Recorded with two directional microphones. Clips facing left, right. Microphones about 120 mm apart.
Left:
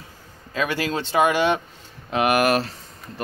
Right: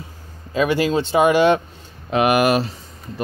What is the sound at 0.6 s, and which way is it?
Speech, 20° right (ahead or behind).